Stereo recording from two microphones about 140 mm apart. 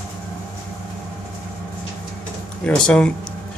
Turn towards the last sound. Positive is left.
turn(degrees=5)  # may be behind; listen again after turning